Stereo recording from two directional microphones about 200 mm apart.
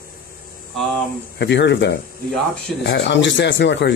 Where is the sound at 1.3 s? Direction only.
60° left (ahead or behind).